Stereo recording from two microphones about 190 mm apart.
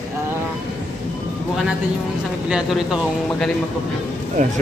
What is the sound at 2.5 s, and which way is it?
Speech, centre (ahead or behind).